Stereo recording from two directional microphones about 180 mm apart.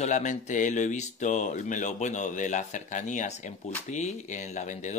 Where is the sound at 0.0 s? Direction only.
40° left (ahead or behind).